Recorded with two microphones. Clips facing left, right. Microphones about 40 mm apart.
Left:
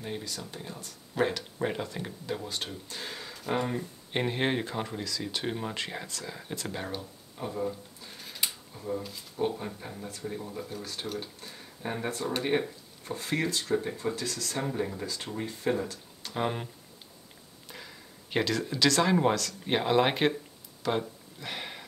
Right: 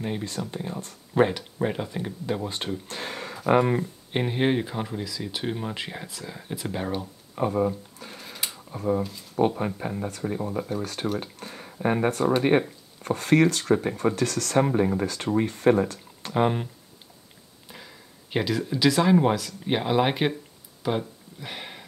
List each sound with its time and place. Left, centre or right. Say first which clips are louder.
0.0 s speech: right 7 dB; right
1.6 s speech: right 5 dB; centre; by 2.8 s right
2.9 s speech: right 6 dB; right
4.1 s speech: right 4 dB; centre
7.3 s speech: right 9 dB; right
8.4 s a sound: even; centre
8.7 s speech: right 9 dB; right
9.8 s speech: right 10 dB; right
13.0 s speech: right 11 dB; right
17.6 s speech: right 1 dB; centre
21.4 s a sound: right 1 dB; centre